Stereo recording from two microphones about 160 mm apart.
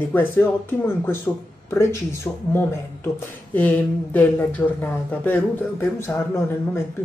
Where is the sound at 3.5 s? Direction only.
10° left (ahead or behind).